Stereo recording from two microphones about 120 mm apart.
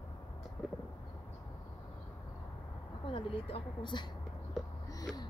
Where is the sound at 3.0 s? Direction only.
45° left (ahead or behind).